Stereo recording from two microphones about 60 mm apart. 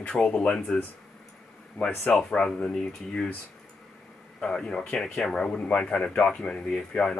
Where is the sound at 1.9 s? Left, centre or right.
Left.